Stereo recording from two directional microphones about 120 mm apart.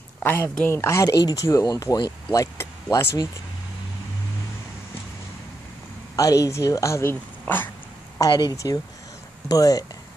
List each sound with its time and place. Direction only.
0.2 s speech: 15° left (ahead or behind)
6.1 s speech: 30° left (ahead or behind)
8.2 s speech: 35° left (ahead or behind)